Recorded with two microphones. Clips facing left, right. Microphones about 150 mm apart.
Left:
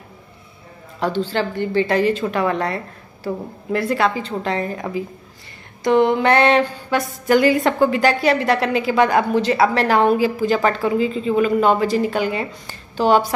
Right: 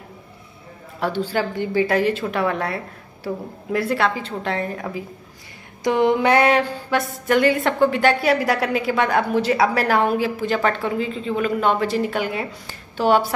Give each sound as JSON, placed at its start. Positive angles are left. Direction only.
{"t": 0.9, "sound": "speech", "side_deg": -5}
{"t": 5.9, "sound": "speech", "side_deg": -15}